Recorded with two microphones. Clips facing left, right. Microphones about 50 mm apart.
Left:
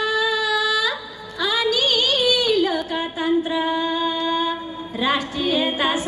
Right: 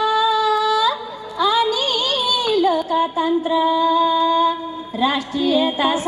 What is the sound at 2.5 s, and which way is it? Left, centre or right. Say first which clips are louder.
Music: right 4 dB; left.